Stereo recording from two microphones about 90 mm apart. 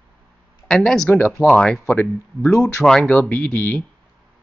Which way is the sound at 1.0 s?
20° left (ahead or behind).